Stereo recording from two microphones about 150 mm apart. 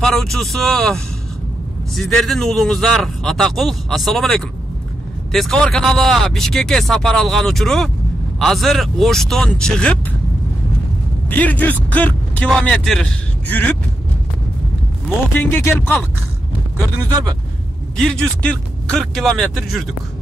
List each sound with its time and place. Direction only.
0.0 s speech: centre (ahead or behind)
11.2 s a man's voice: 10° left (ahead or behind)
11.9 s vehicle: 10° left (ahead or behind)
12.4 s a man's voice: 5° left (ahead or behind)
15.0 s a man's voice: 15° left (ahead or behind)
17.1 s speech: 25° right (ahead or behind)
17.9 s speech: 5° left (ahead or behind)